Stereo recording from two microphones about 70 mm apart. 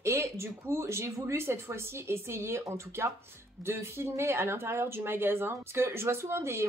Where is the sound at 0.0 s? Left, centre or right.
Right.